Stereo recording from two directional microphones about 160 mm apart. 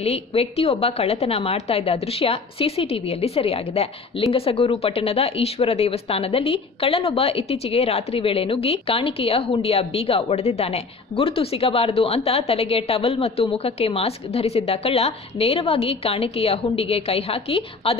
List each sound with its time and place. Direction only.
0.0 s a woman's voice: 40° left (ahead or behind)